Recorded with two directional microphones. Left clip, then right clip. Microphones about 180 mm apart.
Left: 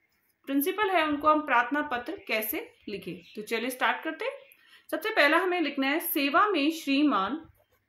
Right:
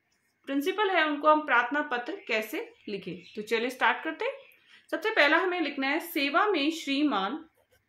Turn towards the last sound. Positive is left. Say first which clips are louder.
# left 2 dB
turn(degrees=20)  # may be behind; listen again after turning